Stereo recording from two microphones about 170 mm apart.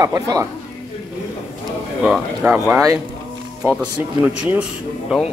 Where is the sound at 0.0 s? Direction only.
20° right (ahead or behind).